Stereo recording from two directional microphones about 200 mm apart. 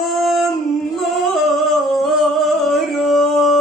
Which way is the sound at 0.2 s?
Centre (ahead or behind).